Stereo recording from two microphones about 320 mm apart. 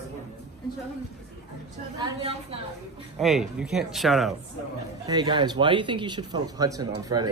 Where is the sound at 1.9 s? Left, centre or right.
Centre.